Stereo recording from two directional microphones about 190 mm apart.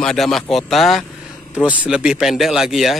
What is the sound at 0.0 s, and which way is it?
Speech, centre (ahead or behind).